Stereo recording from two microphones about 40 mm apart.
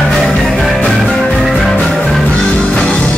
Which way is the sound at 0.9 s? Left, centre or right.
Centre.